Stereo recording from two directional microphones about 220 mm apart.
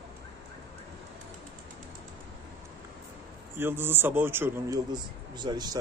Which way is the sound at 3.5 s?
10° right (ahead or behind).